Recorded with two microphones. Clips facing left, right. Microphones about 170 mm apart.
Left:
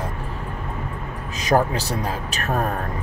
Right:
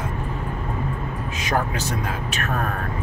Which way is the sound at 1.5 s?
35° left (ahead or behind).